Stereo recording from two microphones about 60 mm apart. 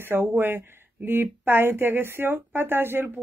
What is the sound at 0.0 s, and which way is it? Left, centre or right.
Speech, right.